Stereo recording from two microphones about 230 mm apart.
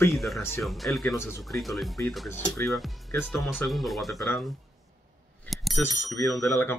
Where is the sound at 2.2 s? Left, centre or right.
Centre.